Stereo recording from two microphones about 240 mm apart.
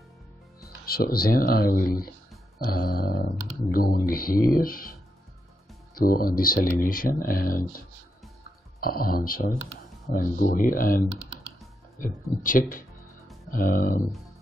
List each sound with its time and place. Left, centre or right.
0.8 s speech: left
5.9 s speech: left
8.8 s speech: left
12.4 s speech: left